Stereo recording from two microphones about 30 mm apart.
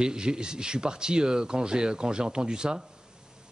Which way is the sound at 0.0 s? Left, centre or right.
Right.